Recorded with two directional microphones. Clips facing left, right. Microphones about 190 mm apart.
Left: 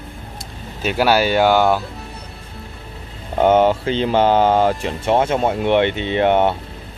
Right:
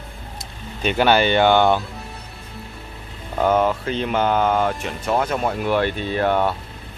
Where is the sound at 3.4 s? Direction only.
25° left (ahead or behind).